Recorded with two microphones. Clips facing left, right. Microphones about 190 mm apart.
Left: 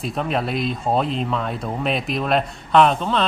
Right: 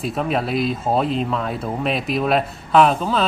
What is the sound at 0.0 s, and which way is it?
Speech, centre (ahead or behind).